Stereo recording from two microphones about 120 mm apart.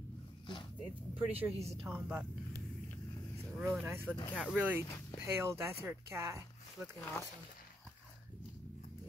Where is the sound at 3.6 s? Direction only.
5° left (ahead or behind).